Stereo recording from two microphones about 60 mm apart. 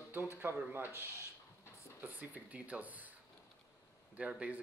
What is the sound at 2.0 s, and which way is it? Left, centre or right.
Speech, right.